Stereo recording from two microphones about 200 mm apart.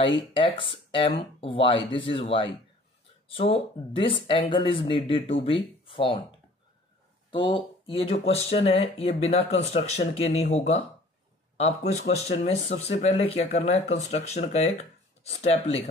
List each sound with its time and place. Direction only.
0.0 s speech: 25° left (ahead or behind)
7.2 s speech: 25° left (ahead or behind)